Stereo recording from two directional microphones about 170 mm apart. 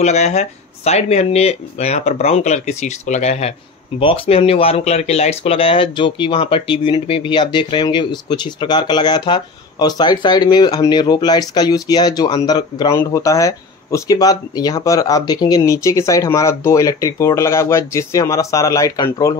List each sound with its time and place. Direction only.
0.0 s speech: 40° left (ahead or behind); by 19.3 s 20° left (ahead or behind)